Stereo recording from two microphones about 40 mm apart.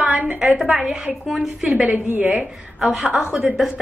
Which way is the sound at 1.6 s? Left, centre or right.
Right.